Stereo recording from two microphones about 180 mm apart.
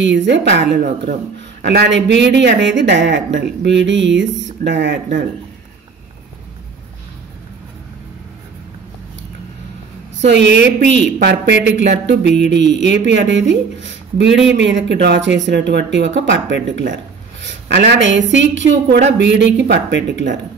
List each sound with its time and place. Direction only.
0.0 s speech: 80° right
10.2 s speech: 80° right
19.1 s speech: 75° right (ahead or behind)